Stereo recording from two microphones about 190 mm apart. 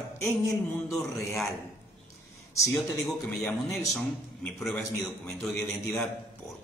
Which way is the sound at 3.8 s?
5° left (ahead or behind).